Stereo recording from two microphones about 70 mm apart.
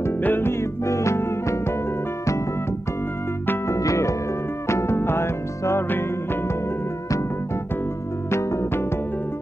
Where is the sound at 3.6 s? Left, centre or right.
Left.